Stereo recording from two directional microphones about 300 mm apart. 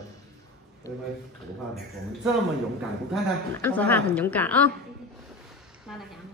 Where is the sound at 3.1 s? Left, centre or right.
Centre.